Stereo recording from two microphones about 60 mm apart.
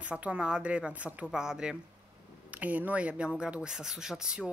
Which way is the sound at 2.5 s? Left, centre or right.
Right.